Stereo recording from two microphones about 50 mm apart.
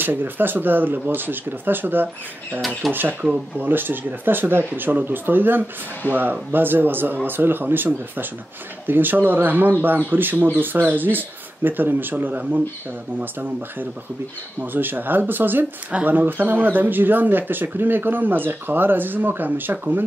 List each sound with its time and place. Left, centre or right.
0.0 s speech: right
6.0 s speech: left
6.5 s speech: right